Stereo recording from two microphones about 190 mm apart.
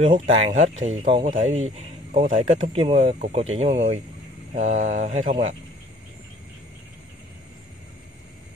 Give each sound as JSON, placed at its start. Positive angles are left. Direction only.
{"t": 0.0, "sound": "speech", "side_deg": -35}